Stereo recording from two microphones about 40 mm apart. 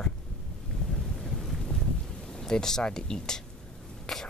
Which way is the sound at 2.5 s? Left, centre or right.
Centre.